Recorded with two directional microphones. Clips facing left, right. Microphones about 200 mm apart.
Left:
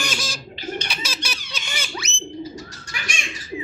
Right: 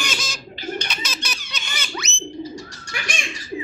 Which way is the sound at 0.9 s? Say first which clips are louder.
Even; 10° left (ahead or behind).